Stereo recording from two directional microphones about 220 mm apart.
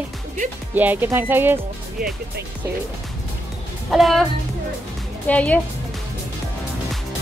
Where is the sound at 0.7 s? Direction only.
10° right (ahead or behind).